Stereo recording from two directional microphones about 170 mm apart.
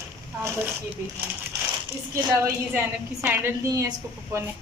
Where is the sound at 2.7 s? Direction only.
10° right (ahead or behind).